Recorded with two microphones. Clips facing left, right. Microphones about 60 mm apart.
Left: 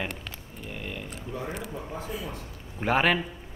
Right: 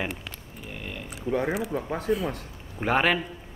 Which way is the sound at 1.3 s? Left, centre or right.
Right.